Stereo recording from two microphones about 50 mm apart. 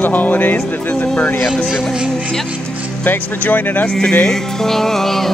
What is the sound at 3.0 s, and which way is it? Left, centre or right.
Speech, left.